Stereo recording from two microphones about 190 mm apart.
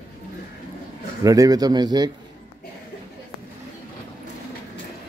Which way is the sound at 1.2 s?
20° right (ahead or behind).